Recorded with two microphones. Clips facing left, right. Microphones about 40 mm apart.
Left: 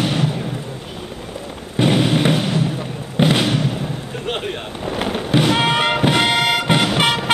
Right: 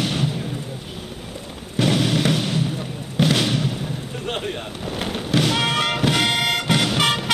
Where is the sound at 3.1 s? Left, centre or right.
Centre.